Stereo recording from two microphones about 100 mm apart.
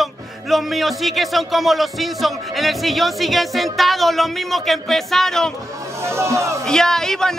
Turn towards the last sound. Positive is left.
turn(degrees=5)  # may be behind; listen again after turning